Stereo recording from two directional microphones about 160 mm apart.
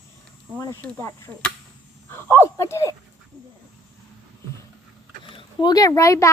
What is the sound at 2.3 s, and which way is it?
Speech, 15° left (ahead or behind).